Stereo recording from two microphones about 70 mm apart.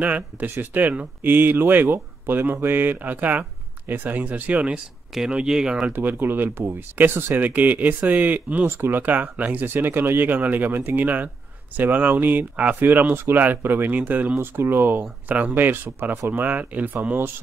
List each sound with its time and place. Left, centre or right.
0.0 s speech: right
5.1 s speech: centre
5.9 s speech: right
14.4 s speech: right